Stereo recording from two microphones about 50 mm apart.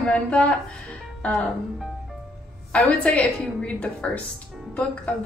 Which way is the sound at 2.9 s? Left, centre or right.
Left.